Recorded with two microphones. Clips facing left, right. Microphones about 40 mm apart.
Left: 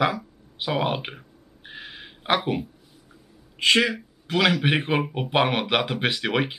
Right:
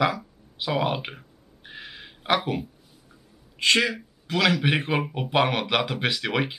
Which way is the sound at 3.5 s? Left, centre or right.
Centre.